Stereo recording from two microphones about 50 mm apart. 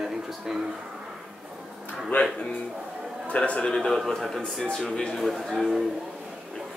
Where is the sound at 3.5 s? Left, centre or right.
Left.